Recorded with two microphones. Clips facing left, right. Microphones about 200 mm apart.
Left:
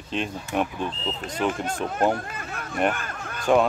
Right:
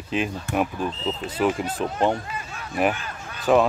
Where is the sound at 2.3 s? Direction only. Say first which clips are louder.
Even; 55° left (ahead or behind).